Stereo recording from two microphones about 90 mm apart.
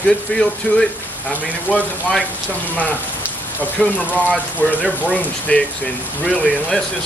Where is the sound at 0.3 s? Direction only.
15° left (ahead or behind).